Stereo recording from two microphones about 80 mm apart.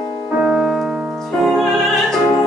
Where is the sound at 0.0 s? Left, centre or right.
Centre.